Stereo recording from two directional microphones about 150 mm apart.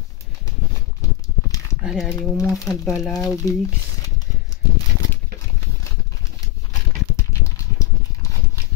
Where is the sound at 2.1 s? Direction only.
20° left (ahead or behind).